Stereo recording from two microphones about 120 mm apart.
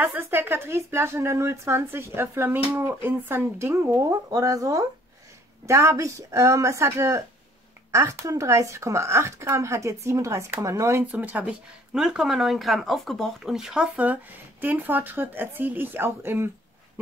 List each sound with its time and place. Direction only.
0.0 s speech: 15° right (ahead or behind)
11.1 s speech: 15° right (ahead or behind)